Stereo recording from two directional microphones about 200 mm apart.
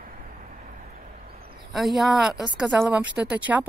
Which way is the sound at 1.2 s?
50° right (ahead or behind).